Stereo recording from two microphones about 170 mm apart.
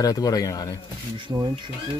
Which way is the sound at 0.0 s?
20° left (ahead or behind).